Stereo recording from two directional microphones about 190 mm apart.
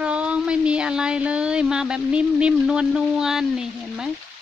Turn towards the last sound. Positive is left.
turn(degrees=-5)  # may be behind; listen again after turning